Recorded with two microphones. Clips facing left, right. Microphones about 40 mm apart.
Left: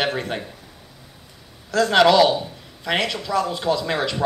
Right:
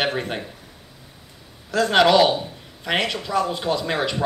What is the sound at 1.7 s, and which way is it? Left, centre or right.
Speech, centre.